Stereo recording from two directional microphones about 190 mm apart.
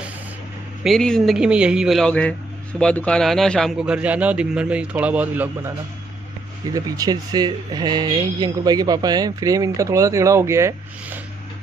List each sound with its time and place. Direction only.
0.8 s a man's voice: 5° left (ahead or behind); by 11.1 s 15° right (ahead or behind)